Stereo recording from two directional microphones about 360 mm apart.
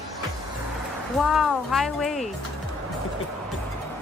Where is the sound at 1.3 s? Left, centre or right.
Centre.